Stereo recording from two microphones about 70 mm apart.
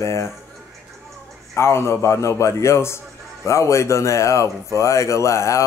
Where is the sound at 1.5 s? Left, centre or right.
Left.